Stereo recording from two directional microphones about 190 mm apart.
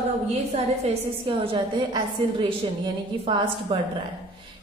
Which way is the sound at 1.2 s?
30° right (ahead or behind).